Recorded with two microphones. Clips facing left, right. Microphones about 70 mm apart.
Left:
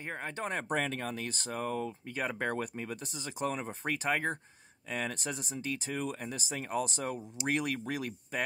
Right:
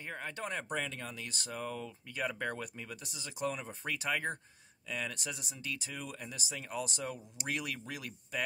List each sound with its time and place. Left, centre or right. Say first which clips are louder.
0.1 s speech: left 3 dB; left